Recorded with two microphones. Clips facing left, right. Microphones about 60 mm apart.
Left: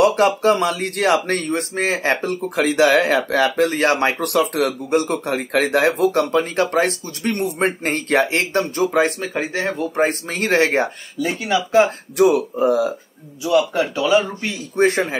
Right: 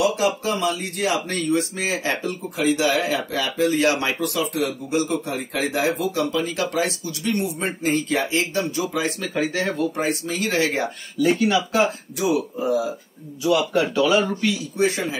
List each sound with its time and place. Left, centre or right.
0.0 s speech: left
3.8 s speech: left
9.3 s speech: left
11.2 s speech: centre
12.2 s speech: left
13.7 s speech: centre
14.5 s speech: left